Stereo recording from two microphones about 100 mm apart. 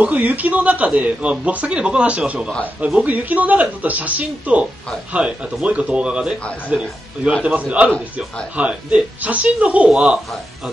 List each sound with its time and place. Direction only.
0.0 s a man's voice: 15° right (ahead or behind)